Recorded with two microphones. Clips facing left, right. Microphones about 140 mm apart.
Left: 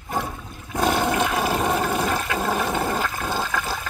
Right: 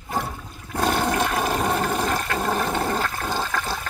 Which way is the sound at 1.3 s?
5° left (ahead or behind).